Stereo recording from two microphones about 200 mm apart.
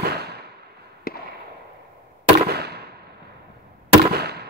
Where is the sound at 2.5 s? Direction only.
55° right (ahead or behind).